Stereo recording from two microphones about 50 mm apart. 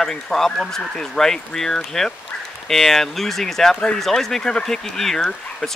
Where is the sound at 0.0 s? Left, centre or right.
Centre.